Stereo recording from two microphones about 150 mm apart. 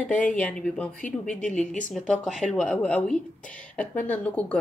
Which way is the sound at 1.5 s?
55° left (ahead or behind).